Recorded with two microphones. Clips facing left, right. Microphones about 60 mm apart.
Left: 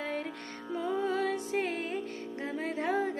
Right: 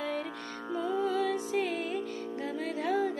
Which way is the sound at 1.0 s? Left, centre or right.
Left.